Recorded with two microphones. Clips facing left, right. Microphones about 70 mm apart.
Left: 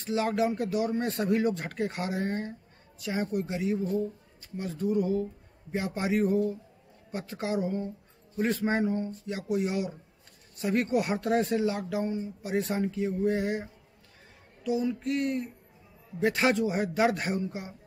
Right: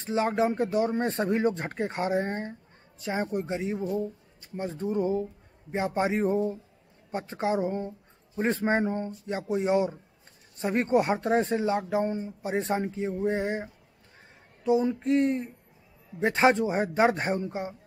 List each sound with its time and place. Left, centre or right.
0.0 s a man's voice: right